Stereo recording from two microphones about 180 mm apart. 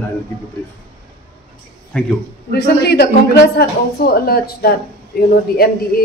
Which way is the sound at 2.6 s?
65° left (ahead or behind).